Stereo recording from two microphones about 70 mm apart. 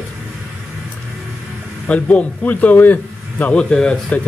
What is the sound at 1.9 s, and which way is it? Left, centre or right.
A man's voice, left.